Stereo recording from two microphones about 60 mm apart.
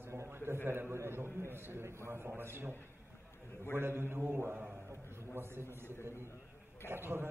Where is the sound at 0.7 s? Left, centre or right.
Right.